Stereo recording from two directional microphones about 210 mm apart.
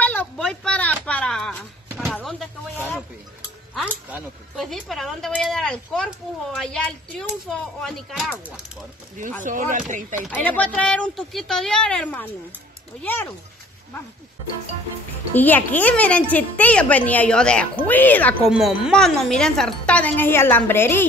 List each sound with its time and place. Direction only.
0.0 s a sound: 5° left (ahead or behind)
4.1 s speech: centre (ahead or behind)
9.4 s speech: 35° right (ahead or behind)
10.2 s a child's voice: 5° left (ahead or behind)
15.3 s a child's voice: 10° left (ahead or behind)